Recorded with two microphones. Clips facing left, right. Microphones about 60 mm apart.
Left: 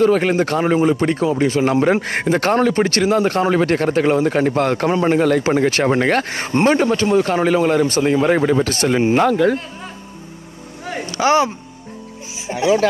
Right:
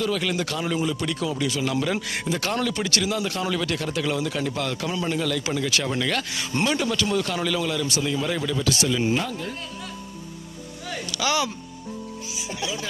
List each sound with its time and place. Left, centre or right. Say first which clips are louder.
0.0 s a man's voice: left 11 dB; left
10.8 s vehicle: left 9 dB; left
12.4 s speech: left 14 dB; left